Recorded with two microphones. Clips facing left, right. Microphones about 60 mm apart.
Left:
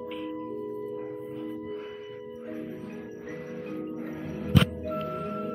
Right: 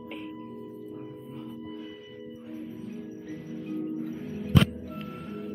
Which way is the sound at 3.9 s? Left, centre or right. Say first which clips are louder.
Even; left.